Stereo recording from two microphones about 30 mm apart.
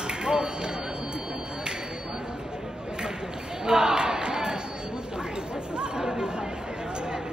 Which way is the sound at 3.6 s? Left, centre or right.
Right.